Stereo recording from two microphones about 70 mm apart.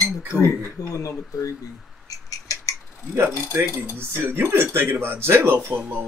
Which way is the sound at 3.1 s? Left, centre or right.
Right.